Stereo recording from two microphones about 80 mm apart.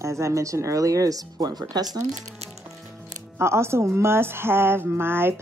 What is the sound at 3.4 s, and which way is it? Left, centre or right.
Speech, right.